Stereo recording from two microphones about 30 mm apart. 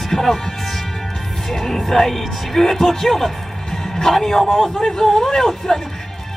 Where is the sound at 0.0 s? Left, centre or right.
Centre.